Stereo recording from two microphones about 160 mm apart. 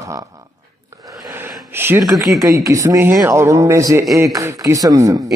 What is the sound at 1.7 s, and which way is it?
A man's voice, 15° right (ahead or behind).